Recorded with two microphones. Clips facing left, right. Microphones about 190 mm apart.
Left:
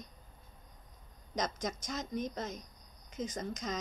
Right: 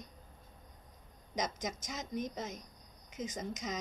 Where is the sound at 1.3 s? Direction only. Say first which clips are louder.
Left 1 dB; 15° right (ahead or behind).